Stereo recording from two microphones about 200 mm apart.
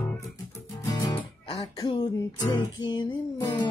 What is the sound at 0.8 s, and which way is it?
Music, 15° left (ahead or behind).